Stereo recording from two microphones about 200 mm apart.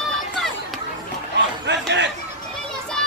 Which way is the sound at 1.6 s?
60° right (ahead or behind).